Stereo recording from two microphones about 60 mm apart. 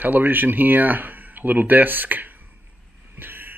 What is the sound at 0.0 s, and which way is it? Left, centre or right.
Speech, right.